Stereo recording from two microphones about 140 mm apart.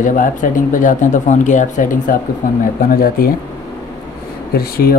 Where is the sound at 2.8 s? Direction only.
90° left.